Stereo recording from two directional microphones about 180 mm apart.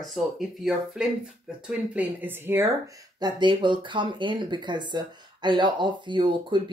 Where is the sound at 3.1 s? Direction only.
25° right (ahead or behind).